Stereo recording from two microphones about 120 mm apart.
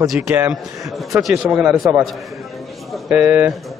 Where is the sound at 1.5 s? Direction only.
15° right (ahead or behind).